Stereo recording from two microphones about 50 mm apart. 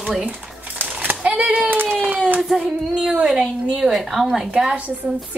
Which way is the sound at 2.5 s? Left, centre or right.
Centre.